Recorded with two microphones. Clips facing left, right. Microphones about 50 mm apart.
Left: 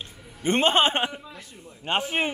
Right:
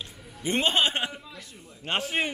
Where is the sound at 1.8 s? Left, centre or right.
Centre.